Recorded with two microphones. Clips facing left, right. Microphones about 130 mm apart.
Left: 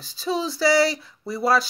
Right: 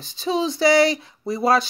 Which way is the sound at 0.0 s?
20° right (ahead or behind).